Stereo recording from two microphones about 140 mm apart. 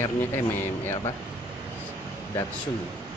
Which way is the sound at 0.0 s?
15° left (ahead or behind).